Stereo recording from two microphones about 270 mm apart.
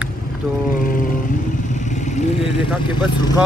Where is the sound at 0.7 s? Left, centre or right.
Left.